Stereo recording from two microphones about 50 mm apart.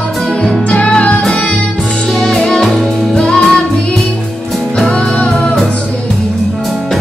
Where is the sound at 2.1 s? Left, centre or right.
Centre.